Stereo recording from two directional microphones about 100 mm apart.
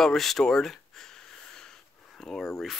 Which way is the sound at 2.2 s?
5° left (ahead or behind).